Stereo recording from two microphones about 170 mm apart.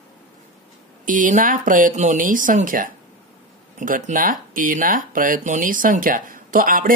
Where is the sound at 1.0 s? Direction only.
50° right (ahead or behind).